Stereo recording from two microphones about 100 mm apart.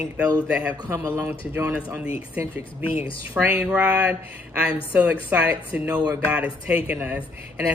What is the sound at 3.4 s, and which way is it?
Speech, 20° right (ahead or behind).